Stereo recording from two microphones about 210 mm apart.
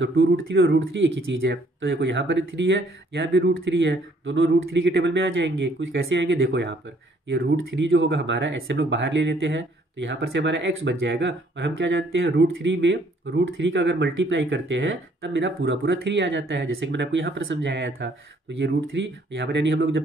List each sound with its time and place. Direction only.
0.0 s speech: 65° right (ahead or behind)